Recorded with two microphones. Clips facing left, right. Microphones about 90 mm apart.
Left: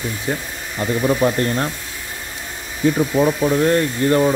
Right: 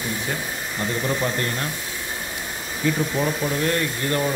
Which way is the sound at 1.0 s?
35° left (ahead or behind).